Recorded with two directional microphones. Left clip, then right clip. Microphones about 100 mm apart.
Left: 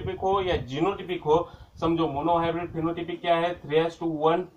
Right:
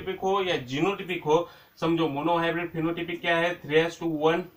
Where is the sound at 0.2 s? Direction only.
30° left (ahead or behind).